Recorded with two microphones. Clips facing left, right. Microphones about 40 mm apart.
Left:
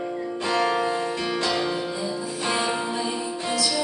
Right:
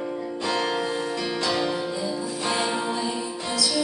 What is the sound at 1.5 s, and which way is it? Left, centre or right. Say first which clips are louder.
Music: right 3 dB; centre.